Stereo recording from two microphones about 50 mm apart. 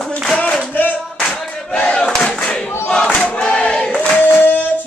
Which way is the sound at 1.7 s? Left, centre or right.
Centre.